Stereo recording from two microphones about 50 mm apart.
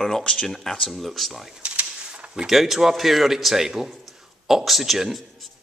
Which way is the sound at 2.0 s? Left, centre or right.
Centre.